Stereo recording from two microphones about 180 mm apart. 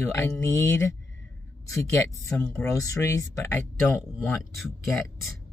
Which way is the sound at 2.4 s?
15° left (ahead or behind).